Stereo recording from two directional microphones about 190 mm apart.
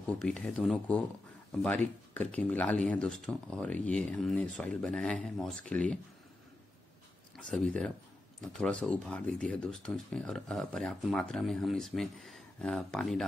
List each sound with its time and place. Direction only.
0.0 s speech: 5° left (ahead or behind)
7.3 s speech: 5° left (ahead or behind)